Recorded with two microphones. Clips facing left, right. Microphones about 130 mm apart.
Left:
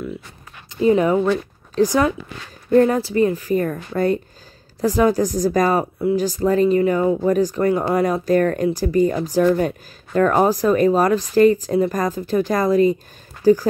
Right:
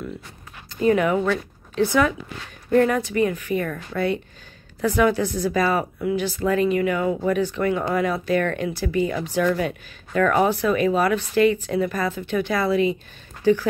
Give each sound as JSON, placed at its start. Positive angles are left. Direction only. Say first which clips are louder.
{"t": 0.8, "sound": "speech", "louder": "left 3 dB", "side_deg": 30}
{"t": 1.8, "sound": "speech", "louder": "left 3 dB", "side_deg": 35}